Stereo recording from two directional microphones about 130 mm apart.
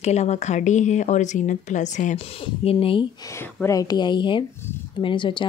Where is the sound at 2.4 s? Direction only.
45° left (ahead or behind).